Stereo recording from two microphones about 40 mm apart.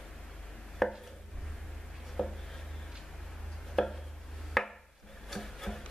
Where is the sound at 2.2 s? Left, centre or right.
Centre.